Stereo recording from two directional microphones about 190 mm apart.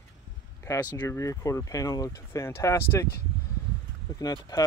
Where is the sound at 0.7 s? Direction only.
20° left (ahead or behind).